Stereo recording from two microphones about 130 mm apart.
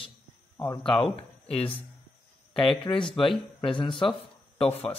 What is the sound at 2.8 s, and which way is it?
Speech, 40° left (ahead or behind).